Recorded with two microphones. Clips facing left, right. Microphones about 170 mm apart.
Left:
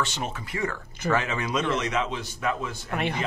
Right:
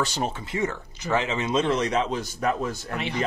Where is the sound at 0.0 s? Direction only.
40° right (ahead or behind).